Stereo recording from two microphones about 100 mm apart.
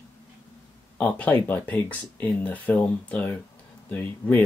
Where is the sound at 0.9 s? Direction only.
15° left (ahead or behind).